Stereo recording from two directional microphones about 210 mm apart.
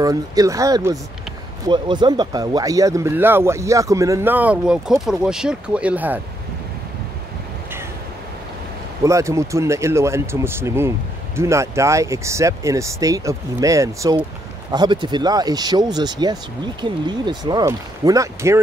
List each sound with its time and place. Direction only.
0.0 s speech: 15° right (ahead or behind)
9.0 s speech: 15° right (ahead or behind)